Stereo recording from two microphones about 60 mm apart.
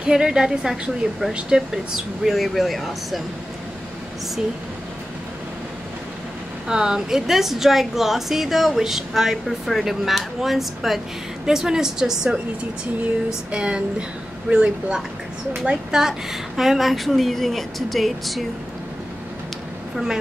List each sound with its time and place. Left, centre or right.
0.0 s a woman's voice: centre
2.2 s a woman's voice: centre
6.7 s a woman's voice: centre
13.5 s a woman's voice: centre